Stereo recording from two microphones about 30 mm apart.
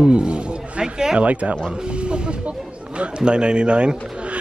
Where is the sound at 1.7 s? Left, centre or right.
Right.